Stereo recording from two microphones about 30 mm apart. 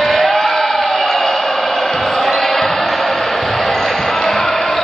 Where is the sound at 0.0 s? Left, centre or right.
Centre.